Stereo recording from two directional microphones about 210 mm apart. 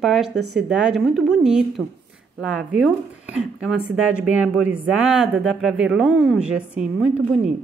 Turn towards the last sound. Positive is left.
turn(degrees=-5)  # may be behind; listen again after turning